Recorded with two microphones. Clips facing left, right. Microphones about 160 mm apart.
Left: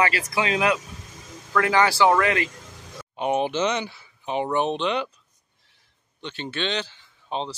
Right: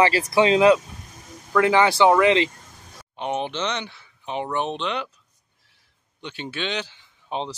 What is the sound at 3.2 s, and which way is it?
Speech, 5° left (ahead or behind).